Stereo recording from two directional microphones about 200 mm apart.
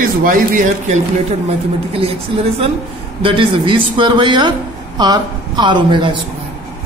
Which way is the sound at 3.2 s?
25° right (ahead or behind).